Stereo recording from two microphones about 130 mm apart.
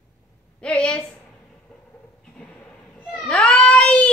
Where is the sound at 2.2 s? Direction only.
5° left (ahead or behind).